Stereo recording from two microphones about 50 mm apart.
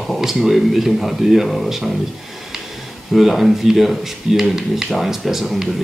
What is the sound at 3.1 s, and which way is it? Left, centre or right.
Speech, centre.